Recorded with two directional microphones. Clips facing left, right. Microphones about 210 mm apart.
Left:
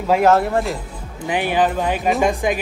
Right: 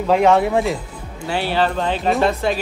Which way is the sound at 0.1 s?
5° left (ahead or behind).